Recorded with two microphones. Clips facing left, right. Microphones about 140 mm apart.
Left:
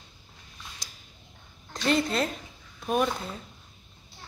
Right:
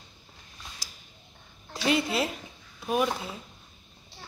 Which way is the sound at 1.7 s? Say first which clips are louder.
Left 1 dB; 5° right (ahead or behind).